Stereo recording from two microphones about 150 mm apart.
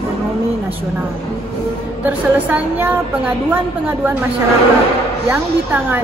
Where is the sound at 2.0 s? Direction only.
10° right (ahead or behind).